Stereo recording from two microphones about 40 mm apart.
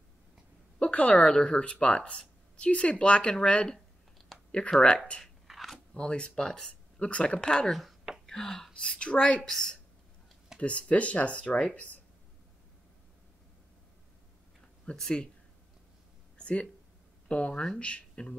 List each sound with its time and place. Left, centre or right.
0.7 s a sound: left
1.2 s speech: left
1.6 s speech: left
4.3 s a sound: centre
4.8 s speech: left
5.2 s crunch: centre
5.9 s speech: left
6.7 s speech: left; by 8.6 s centre
8.7 s speech: left
9.4 s a woman's voice: centre
10.6 s speech: left
15.0 s a woman's voice: centre
16.3 s a sound: left
17.3 s speech: left